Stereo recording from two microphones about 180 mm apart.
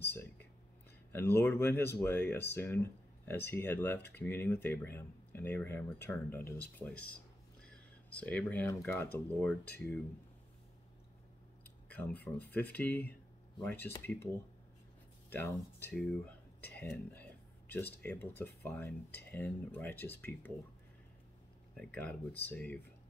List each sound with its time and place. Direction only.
0.0 s a sound: 10° left (ahead or behind)
1.1 s speech: 10° left (ahead or behind)
11.6 s speech: 10° left (ahead or behind)
15.2 s speech: 10° left (ahead or behind)
21.7 s speech: 5° left (ahead or behind)